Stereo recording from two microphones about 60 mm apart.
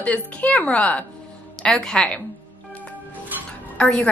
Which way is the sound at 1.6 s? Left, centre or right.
Centre.